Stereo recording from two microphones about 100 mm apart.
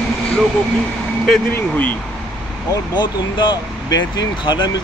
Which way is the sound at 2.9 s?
50° left (ahead or behind).